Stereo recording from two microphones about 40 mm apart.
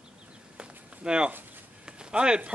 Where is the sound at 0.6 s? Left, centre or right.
Right.